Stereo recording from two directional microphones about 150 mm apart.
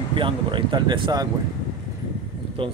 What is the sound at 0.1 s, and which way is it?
Speech, 35° right (ahead or behind).